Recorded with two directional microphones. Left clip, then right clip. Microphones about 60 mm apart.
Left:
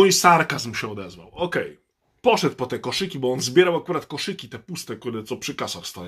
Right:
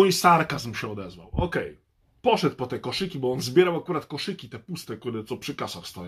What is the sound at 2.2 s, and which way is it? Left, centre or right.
Speech, left.